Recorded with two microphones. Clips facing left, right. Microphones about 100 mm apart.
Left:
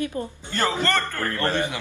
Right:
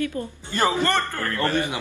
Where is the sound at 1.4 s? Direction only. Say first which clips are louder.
Right 1 dB; 20° left (ahead or behind).